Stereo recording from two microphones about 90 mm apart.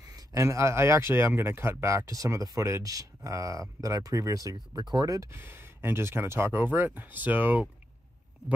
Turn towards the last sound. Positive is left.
turn(degrees=-20)  # may be behind; listen again after turning